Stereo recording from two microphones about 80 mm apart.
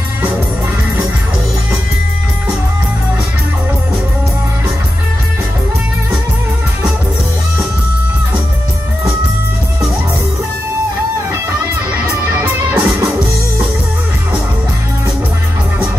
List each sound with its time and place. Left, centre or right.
11.9 s music: right